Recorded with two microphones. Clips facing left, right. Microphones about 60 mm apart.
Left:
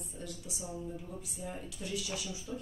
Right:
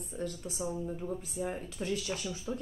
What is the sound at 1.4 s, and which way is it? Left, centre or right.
Speech, right.